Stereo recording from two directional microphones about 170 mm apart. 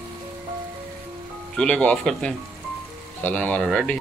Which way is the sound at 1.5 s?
5° left (ahead or behind).